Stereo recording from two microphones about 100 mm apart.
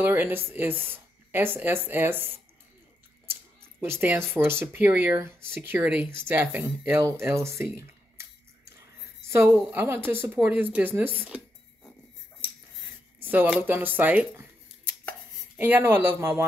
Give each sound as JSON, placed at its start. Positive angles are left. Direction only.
{"t": 0.0, "sound": "speech", "side_deg": -20}
{"t": 3.8, "sound": "speech", "side_deg": -20}
{"t": 11.2, "sound": "a sound", "side_deg": -10}
{"t": 13.2, "sound": "speech", "side_deg": -15}
{"t": 15.5, "sound": "speech", "side_deg": -20}